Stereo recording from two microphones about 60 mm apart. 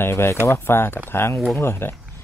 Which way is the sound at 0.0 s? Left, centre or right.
Left.